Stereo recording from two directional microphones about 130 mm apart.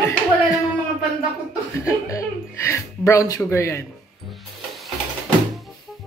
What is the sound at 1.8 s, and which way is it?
Speech, 25° left (ahead or behind).